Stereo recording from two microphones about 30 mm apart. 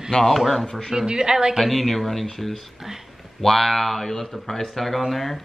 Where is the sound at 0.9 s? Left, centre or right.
Right.